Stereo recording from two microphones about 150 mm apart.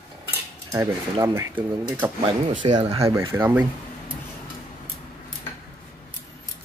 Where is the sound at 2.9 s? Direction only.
20° right (ahead or behind).